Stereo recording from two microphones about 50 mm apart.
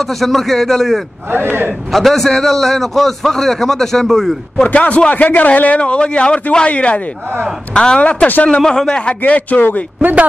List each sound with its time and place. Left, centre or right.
0.0 s a man's voice: centre
1.3 s speech: right
1.9 s a man's voice: centre
4.7 s a man's voice: left
5.1 s a man's voice: left; by 9.1 s centre
9.2 s a man's voice: left